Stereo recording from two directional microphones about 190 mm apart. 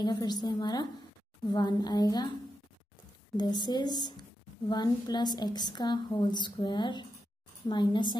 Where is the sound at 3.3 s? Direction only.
20° left (ahead or behind).